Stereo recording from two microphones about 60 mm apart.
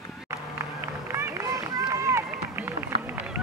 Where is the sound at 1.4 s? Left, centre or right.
Right.